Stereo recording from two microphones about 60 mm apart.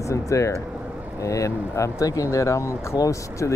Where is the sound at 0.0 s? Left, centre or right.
Left.